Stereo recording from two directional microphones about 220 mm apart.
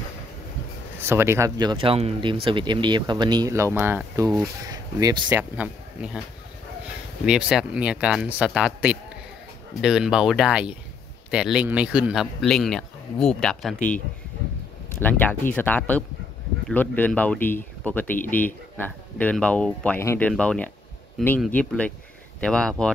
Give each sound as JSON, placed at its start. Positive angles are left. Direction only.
{"t": 1.0, "sound": "speech", "side_deg": -10}
{"t": 5.4, "sound": "a man's voice", "side_deg": -5}
{"t": 7.2, "sound": "a man's voice", "side_deg": -5}
{"t": 15.0, "sound": "a man's voice", "side_deg": 10}